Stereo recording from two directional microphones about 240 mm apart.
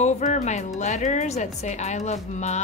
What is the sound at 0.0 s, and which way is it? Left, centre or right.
A woman's voice, left.